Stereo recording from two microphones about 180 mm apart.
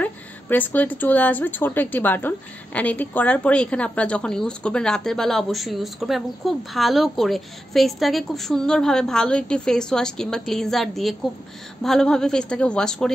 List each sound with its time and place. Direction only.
0.0 s speech: 10° left (ahead or behind)